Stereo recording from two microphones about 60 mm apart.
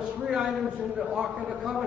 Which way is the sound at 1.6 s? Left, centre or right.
Centre.